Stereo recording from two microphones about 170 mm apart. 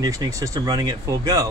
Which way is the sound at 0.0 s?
20° right (ahead or behind).